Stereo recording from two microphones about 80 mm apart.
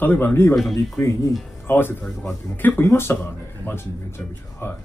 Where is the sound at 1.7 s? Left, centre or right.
Left.